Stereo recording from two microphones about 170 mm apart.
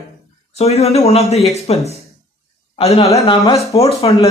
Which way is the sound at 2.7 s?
35° left (ahead or behind).